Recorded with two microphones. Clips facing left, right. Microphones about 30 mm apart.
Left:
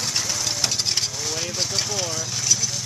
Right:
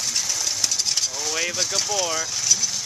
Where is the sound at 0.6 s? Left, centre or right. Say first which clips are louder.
Even; centre.